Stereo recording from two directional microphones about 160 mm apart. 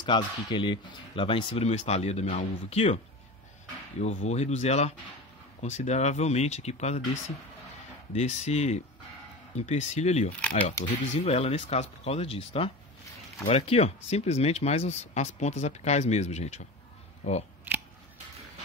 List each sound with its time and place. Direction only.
0.1 s speech: 30° left (ahead or behind)
4.0 s speech: 45° left (ahead or behind)
8.1 s speech: 45° left (ahead or behind)
10.6 s speech: 15° left (ahead or behind)
11.2 s speech: 40° left (ahead or behind)
17.7 s scissors: 10° right (ahead or behind)